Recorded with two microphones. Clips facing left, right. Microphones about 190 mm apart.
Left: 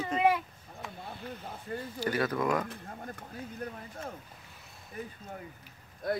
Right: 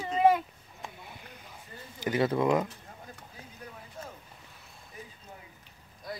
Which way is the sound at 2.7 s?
55° left (ahead or behind).